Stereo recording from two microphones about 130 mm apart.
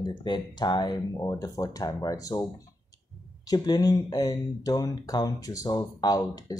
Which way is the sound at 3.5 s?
30° left (ahead or behind).